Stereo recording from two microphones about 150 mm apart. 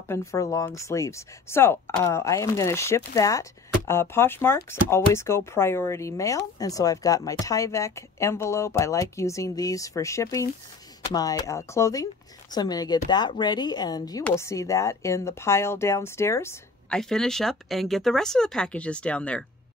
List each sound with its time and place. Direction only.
0.1 s speech: 20° left (ahead or behind)
16.9 s speech: 5° left (ahead or behind)